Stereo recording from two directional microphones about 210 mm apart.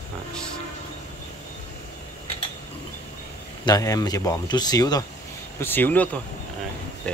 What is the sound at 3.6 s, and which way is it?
Speech, 15° left (ahead or behind).